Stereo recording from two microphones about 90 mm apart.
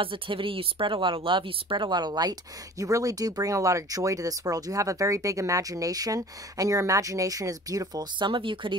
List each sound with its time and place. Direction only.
0.0 s speech: 75° right (ahead or behind); by 2.3 s 50° right (ahead or behind)
2.8 s speech: 40° right (ahead or behind)
8.3 s speech: 70° right (ahead or behind)